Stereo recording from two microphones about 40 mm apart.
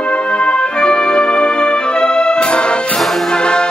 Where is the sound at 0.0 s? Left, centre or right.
Left.